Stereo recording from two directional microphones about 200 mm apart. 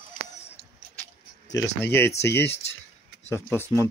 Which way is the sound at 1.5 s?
15° left (ahead or behind).